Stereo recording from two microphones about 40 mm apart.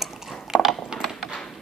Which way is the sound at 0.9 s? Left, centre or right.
Right.